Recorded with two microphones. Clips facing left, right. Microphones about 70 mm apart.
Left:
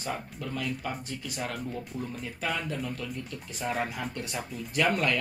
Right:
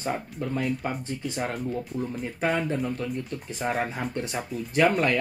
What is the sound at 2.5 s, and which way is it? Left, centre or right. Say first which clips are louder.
Speech: right 6 dB; right.